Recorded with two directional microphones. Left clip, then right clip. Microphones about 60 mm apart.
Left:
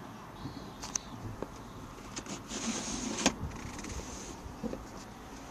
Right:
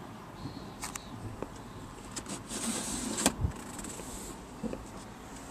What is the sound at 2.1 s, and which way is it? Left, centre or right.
Vehicle, centre.